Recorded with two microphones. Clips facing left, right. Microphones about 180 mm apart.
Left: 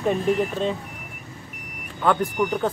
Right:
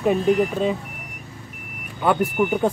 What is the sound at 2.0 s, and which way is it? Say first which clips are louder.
Speech: right 1 dB; 10° right (ahead or behind).